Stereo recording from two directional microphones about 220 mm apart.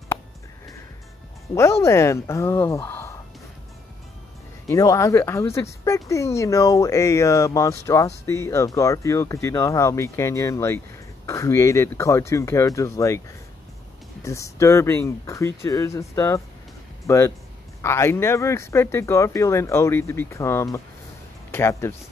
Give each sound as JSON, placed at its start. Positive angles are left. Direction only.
{"t": 1.5, "sound": "speech", "side_deg": 15}
{"t": 4.6, "sound": "speech", "side_deg": 15}
{"t": 14.2, "sound": "speech", "side_deg": 15}